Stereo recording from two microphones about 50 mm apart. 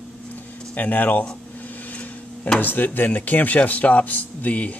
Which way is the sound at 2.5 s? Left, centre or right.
Left.